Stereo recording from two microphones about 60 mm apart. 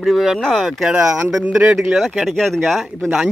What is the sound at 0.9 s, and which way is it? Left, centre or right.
Speech, centre.